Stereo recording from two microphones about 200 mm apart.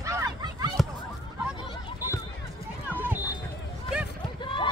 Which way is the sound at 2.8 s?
10° right (ahead or behind).